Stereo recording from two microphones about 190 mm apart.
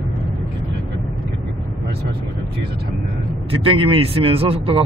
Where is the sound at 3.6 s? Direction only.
30° right (ahead or behind).